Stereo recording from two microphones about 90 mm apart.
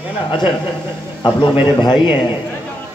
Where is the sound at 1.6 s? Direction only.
55° left (ahead or behind).